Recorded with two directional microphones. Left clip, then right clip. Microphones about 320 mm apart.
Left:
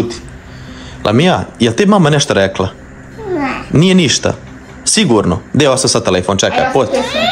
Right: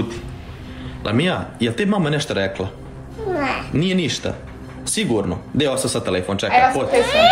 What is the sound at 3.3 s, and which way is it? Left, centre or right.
Babbling, centre.